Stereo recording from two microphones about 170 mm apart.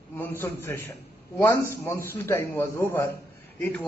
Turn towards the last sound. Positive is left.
turn(degrees=5)  # may be behind; listen again after turning